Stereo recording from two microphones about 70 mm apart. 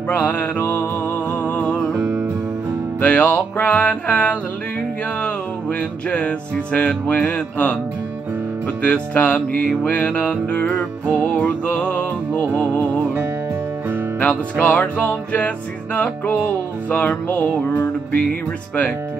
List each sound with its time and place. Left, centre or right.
0.1 s music: left
2.0 s music: centre
3.0 s music: centre
8.8 s music: left
14.2 s music: centre